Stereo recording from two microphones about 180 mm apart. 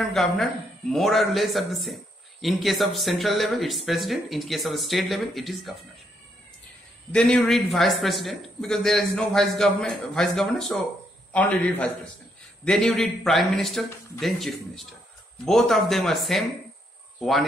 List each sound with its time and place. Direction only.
0.0 s a man's voice: centre (ahead or behind)
7.1 s a man's voice: 5° left (ahead or behind)